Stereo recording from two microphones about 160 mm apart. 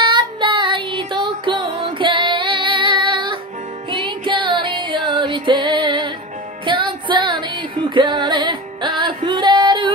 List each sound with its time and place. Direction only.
0.0 s music: 30° right (ahead or behind)